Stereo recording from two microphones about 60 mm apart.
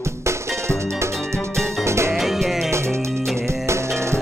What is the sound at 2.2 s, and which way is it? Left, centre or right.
Music, centre.